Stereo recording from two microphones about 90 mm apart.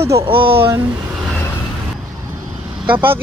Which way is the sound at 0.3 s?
85° right.